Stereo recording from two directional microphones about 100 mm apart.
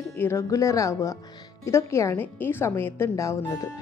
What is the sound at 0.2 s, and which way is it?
A woman's voice, 30° left (ahead or behind).